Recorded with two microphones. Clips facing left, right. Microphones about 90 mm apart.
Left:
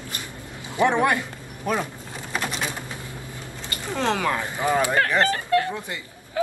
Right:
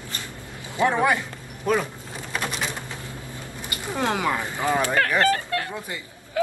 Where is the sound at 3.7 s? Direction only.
15° right (ahead or behind).